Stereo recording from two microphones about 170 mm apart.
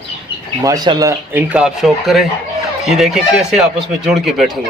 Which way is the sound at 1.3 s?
5° right (ahead or behind).